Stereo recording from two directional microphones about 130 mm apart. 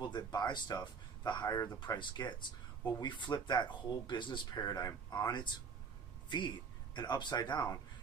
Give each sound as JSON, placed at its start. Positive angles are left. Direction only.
{"t": 0.0, "sound": "speech", "side_deg": 35}
{"t": 1.8, "sound": "speech", "side_deg": 35}